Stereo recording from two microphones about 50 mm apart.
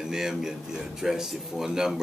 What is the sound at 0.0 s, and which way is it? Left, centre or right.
Speech, centre.